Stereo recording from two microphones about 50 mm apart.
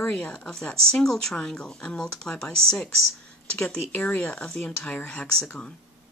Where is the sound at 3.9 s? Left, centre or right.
Left.